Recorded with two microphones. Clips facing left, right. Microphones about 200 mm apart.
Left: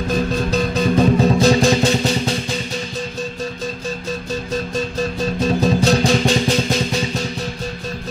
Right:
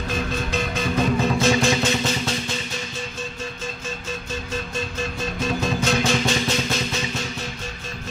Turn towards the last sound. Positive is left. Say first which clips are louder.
# left 6 dB
turn(degrees=35)  # may be behind; listen again after turning